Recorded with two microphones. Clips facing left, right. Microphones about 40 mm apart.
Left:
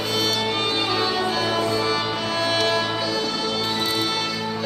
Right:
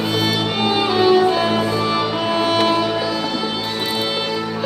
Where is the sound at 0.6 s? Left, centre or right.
Centre.